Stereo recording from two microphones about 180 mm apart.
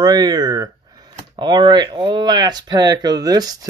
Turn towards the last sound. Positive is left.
turn(degrees=-20)  # may be behind; listen again after turning